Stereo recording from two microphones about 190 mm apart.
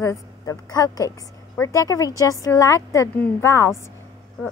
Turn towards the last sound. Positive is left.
turn(degrees=15)  # may be behind; listen again after turning